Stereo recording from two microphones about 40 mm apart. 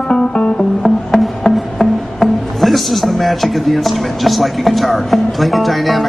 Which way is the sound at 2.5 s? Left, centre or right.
Centre.